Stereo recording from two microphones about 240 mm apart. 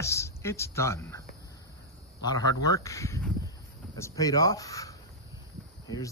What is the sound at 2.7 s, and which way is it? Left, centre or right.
A man's voice, centre.